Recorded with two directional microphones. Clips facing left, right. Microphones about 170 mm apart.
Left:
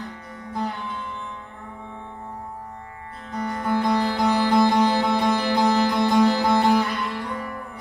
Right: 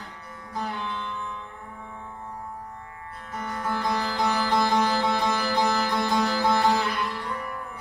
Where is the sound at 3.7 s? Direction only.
15° left (ahead or behind).